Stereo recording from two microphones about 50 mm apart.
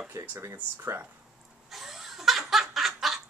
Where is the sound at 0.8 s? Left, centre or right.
Right.